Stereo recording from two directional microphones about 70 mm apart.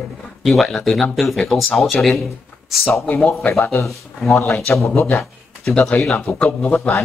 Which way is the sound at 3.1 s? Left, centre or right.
Left.